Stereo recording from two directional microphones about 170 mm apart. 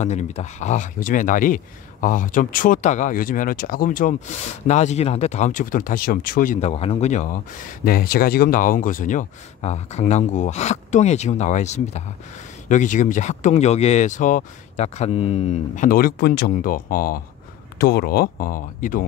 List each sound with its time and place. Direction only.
0.0 s speech: 40° left (ahead or behind)
7.8 s speech: 60° left (ahead or behind)
17.7 s speech: 70° left (ahead or behind); by 19.0 s 50° left (ahead or behind)